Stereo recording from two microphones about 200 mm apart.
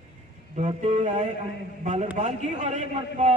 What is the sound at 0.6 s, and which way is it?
A man's voice, 35° right (ahead or behind).